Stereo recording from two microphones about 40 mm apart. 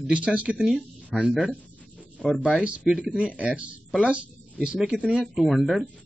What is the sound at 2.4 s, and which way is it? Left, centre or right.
A man's voice, right.